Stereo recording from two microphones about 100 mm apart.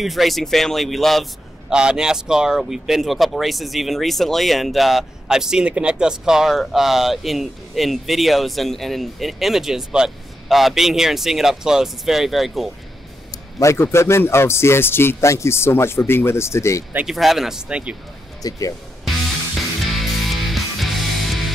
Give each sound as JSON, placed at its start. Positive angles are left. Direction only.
{"t": 0.0, "sound": "a man's voice", "side_deg": 0}
{"t": 13.3, "sound": "a man's voice", "side_deg": 30}
{"t": 17.0, "sound": "a man's voice", "side_deg": 0}
{"t": 18.4, "sound": "speech", "side_deg": 35}
{"t": 19.0, "sound": "music", "side_deg": 0}